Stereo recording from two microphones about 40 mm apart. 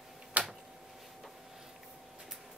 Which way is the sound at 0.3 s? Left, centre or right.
Right.